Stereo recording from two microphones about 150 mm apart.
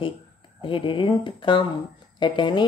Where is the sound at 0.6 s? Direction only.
35° left (ahead or behind).